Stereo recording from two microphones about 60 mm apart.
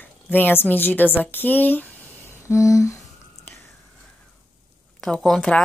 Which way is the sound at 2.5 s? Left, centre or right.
Left.